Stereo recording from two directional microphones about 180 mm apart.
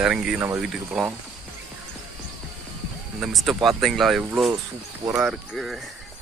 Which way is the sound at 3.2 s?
Centre (ahead or behind).